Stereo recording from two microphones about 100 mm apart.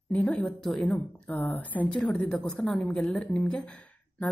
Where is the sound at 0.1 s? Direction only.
15° left (ahead or behind).